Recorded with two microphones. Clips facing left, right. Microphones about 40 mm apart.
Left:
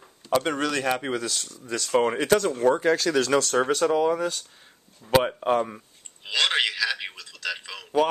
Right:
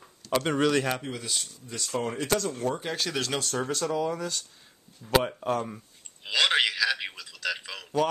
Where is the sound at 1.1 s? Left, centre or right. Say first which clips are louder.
Left 5 dB; left.